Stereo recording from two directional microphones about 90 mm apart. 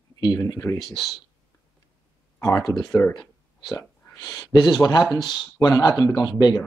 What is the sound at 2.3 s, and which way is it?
Speech, 35° left (ahead or behind).